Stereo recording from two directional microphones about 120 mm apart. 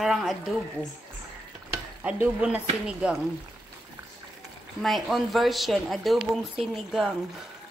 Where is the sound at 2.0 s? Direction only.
10° right (ahead or behind).